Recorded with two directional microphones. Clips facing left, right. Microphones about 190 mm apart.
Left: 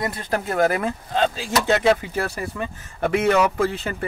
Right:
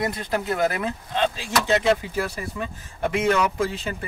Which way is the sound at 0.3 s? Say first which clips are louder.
Left 4 dB; 50° left (ahead or behind).